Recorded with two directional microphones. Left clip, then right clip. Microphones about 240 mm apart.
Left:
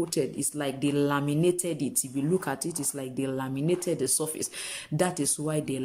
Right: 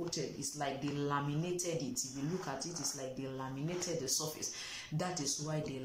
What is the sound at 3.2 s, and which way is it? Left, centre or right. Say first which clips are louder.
Speech: left 11 dB; left.